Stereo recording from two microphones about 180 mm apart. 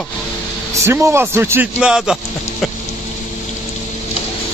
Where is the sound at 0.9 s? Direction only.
15° right (ahead or behind).